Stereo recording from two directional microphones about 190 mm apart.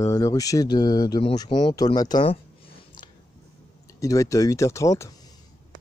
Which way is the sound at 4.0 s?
15° left (ahead or behind).